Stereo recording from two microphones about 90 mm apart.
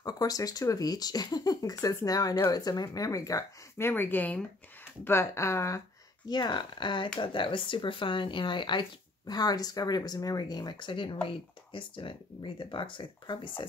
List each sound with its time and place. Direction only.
0.0 s speech: 45° left (ahead or behind)
2.5 s speech: 45° left (ahead or behind)
3.8 s speech: 25° left (ahead or behind)
5.0 s speech: 30° left (ahead or behind)
6.2 s speech: 50° left (ahead or behind)
9.3 s speech: 45° left (ahead or behind); by 13.7 s 65° left (ahead or behind)